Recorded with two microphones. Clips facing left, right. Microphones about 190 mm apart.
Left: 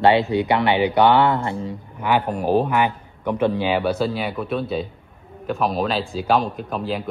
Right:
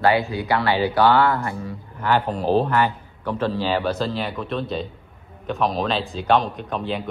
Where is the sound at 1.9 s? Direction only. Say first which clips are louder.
Left 1 dB; 15° left (ahead or behind).